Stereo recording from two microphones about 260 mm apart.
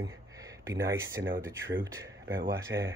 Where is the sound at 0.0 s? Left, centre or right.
Centre.